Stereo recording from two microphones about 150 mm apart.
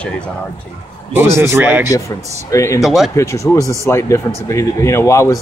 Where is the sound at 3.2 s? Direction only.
20° left (ahead or behind).